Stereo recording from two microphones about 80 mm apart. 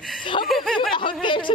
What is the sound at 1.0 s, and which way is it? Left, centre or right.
Speech, left.